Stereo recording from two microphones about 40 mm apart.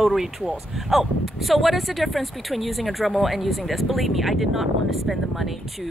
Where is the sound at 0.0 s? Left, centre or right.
Centre.